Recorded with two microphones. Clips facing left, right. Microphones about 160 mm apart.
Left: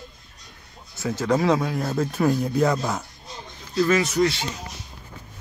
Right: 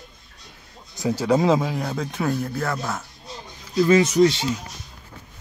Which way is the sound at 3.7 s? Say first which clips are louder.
Right 4 dB; 20° right (ahead or behind).